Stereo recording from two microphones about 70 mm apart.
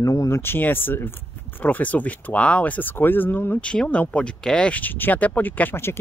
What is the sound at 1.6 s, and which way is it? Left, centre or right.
Speech, left.